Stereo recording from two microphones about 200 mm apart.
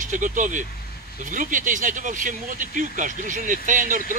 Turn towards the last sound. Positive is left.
turn(degrees=-40)  # may be behind; listen again after turning